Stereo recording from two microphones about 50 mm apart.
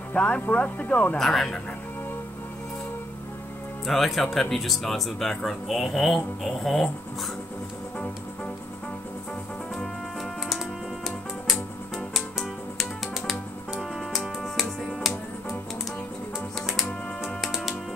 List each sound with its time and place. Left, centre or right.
0.1 s speech: left
1.1 s speech: centre
3.8 s speech: centre
11.1 s music: centre